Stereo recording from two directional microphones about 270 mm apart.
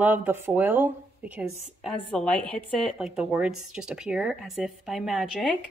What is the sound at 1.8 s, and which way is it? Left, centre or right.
A woman's voice, centre.